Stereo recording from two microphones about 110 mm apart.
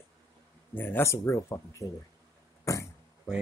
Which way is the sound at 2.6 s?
30° left (ahead or behind).